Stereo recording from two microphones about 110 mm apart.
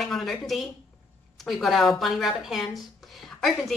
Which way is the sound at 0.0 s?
Centre (ahead or behind).